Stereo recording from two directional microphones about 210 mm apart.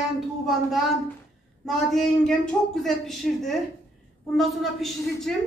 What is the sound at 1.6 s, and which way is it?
A woman's voice, centre (ahead or behind).